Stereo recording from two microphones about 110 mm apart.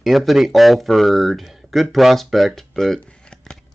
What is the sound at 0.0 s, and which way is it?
Speech, centre (ahead or behind).